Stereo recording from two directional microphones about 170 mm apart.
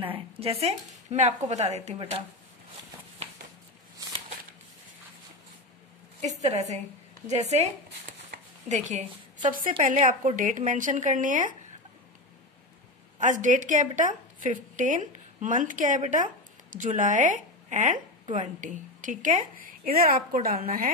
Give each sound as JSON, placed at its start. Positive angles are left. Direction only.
{"t": 0.0, "sound": "speech", "side_deg": -35}
{"t": 6.2, "sound": "speech", "side_deg": -40}
{"t": 8.3, "sound": "a sound", "side_deg": -60}
{"t": 8.6, "sound": "a woman's voice", "side_deg": -45}
{"t": 13.2, "sound": "a woman's voice", "side_deg": -50}